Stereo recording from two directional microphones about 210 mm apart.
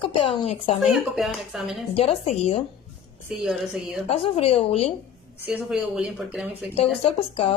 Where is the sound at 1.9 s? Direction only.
30° left (ahead or behind).